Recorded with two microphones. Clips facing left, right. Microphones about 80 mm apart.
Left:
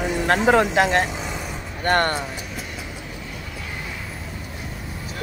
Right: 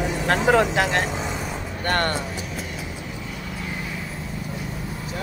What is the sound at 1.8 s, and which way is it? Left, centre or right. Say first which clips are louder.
Speech: left 3 dB; left.